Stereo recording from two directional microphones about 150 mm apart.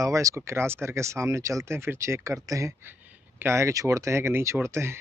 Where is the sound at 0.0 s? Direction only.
20° right (ahead or behind).